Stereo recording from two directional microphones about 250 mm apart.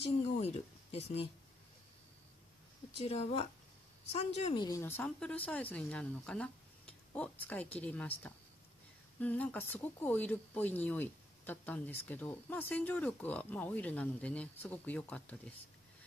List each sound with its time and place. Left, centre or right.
0.4 s speech: left
3.1 s speech: left
4.6 s speech: centre